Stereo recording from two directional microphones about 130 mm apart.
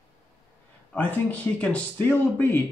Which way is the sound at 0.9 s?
10° left (ahead or behind).